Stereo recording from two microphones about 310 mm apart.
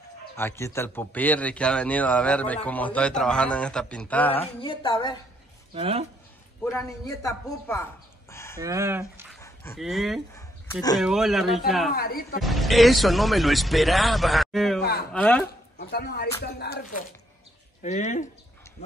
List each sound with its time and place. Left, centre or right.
0.4 s a man's voice: centre
5.8 s speech: centre
6.6 s a man's voice: centre
8.5 s speech: centre
9.1 s dog: centre
9.4 s speech: centre
11.0 s a man's voice: centre
11.9 s speech: left
12.4 s a man's voice: centre
14.8 s speech: left
15.1 s a man's voice: centre
15.9 s speech: left
17.8 s speech: left